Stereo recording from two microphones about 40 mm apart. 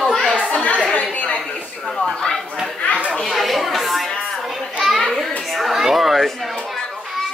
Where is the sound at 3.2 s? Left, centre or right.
Centre.